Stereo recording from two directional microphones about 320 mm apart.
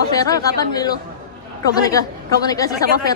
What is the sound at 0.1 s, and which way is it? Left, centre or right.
A woman's voice, centre.